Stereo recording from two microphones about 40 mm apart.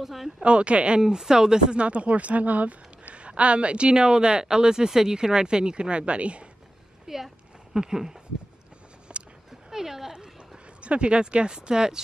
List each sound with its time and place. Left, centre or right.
0.0 s speech: centre
0.4 s speech: right
1.0 s speech: centre
1.8 s speech: right
7.1 s speech: centre
9.1 s a sound: right
9.7 s a sound: centre
10.8 s speech: right